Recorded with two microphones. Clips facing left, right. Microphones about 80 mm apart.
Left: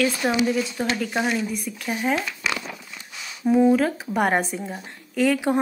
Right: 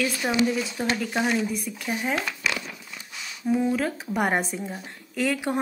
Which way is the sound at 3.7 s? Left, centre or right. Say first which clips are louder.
Left 4 dB; centre.